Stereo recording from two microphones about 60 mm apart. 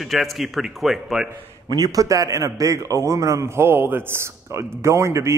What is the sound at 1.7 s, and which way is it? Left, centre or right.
A man's voice, right.